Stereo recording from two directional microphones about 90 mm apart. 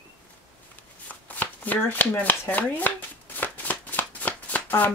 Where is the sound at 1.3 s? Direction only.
20° left (ahead or behind).